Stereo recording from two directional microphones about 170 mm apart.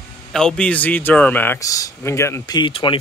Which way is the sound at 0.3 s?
5° left (ahead or behind).